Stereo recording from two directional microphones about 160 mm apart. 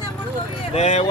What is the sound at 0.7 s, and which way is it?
Speech, 45° left (ahead or behind).